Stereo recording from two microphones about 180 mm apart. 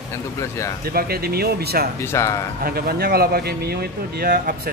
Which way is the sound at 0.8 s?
55° right (ahead or behind).